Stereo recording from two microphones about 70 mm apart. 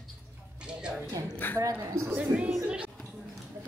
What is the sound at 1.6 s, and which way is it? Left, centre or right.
Speech, right.